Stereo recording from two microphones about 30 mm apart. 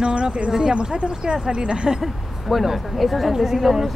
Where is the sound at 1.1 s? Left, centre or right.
Right.